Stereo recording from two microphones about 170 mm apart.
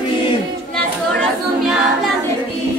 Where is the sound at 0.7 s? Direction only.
5° left (ahead or behind).